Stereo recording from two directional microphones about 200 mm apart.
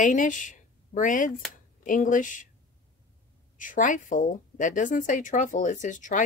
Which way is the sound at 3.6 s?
40° left (ahead or behind).